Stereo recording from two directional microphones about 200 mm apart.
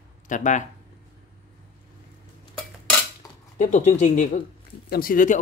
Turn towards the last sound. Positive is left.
turn(degrees=45)  # may be behind; listen again after turning